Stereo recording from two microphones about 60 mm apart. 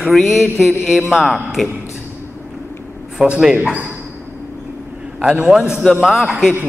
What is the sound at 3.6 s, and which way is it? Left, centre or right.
Speech, right.